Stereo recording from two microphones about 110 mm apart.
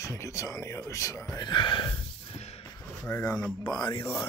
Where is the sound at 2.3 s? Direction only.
75° left (ahead or behind).